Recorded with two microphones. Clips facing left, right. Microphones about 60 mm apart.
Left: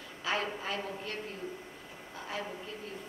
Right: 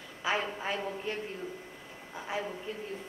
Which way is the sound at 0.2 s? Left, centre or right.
Centre.